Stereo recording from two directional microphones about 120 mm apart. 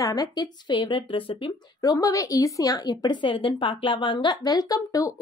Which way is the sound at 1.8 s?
30° left (ahead or behind).